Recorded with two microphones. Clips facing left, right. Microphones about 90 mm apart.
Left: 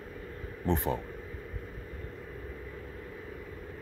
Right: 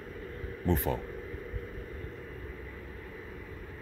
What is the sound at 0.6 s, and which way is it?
Speech, 20° left (ahead or behind).